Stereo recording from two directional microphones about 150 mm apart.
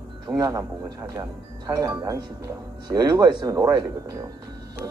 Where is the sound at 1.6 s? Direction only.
25° right (ahead or behind).